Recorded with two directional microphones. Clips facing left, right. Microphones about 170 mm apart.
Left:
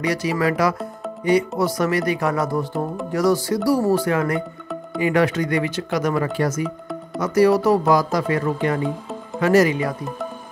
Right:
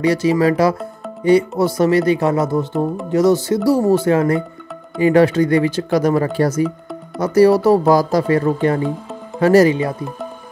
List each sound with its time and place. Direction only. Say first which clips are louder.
0.0 s speech: right 6 dB; 30° right (ahead or behind)